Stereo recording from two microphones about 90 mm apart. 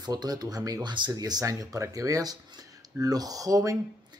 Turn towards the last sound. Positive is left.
turn(degrees=-40)  # may be behind; listen again after turning